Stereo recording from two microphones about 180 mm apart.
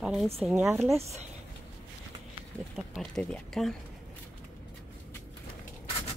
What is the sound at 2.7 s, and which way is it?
Speech, centre (ahead or behind).